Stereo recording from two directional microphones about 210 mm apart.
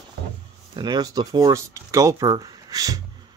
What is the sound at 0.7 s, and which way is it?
Speech, 20° right (ahead or behind).